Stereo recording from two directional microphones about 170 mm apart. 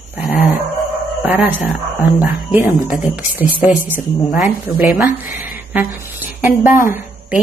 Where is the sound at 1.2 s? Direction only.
10° right (ahead or behind).